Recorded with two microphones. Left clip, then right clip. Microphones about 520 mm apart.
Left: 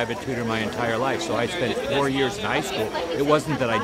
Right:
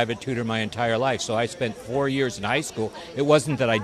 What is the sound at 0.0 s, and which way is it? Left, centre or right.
A man's voice, right.